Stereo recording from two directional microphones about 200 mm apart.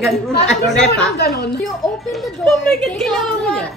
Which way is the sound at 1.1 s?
55° left (ahead or behind).